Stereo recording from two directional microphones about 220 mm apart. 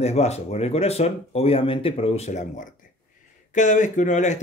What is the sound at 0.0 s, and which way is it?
Speech, 30° left (ahead or behind).